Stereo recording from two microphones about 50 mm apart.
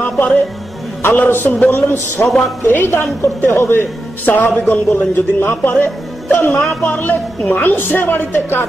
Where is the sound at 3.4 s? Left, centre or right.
Left.